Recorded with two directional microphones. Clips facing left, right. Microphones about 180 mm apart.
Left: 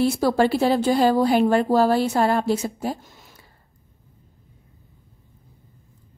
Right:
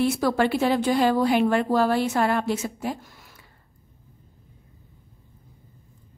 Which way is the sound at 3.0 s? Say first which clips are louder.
Even; 20° left (ahead or behind).